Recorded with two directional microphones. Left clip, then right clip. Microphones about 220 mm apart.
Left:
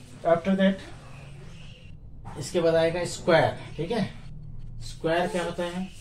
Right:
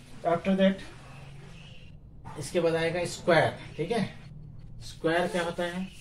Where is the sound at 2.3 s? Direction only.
15° left (ahead or behind).